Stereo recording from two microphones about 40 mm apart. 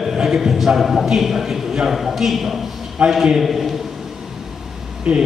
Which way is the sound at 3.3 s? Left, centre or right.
Centre.